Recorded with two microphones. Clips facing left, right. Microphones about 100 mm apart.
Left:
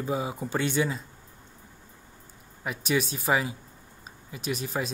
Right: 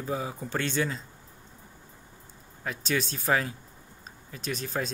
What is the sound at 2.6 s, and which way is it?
Speech, 10° left (ahead or behind).